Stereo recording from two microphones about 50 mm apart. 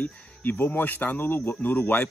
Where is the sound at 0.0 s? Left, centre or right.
Left.